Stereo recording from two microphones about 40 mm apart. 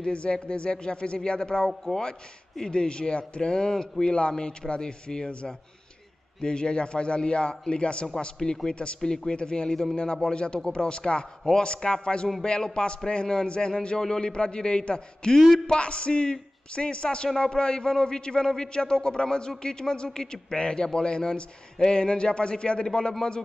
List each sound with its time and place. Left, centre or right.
0.0 s a man's voice: left